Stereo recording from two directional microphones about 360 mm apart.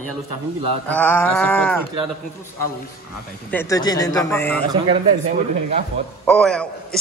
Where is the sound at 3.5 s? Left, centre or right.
Centre.